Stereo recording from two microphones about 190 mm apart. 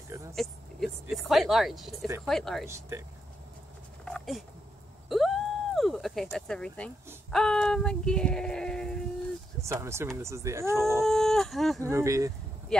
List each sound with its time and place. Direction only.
0.3 s speech: centre (ahead or behind)
4.0 s insect: centre (ahead or behind)
5.1 s a sound: centre (ahead or behind)
6.3 s speech: 5° left (ahead or behind)
9.6 s speech: 15° right (ahead or behind)
11.1 s speech: centre (ahead or behind)
11.8 s speech: 15° right (ahead or behind)